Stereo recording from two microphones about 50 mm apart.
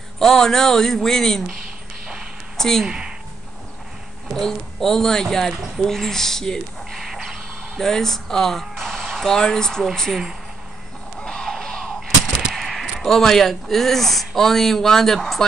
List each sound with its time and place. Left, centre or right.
0.2 s speech: centre
2.5 s a sound: centre
2.8 s speech: centre
4.3 s speech: centre
11.1 s music: centre
11.4 s music: centre
12.5 s a sound: centre
13.0 s speech: centre